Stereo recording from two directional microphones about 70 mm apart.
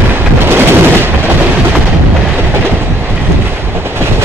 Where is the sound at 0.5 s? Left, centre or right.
Right.